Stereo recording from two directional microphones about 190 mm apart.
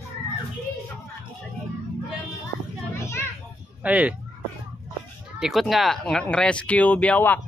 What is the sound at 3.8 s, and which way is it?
Speech, 5° right (ahead or behind).